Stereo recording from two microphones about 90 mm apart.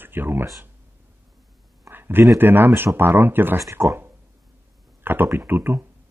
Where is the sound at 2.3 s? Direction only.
25° right (ahead or behind).